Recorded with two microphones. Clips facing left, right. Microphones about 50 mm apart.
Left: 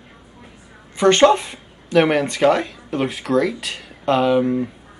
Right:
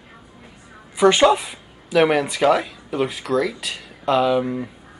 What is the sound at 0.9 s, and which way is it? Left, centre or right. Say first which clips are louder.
Speech: left 1 dB; centre.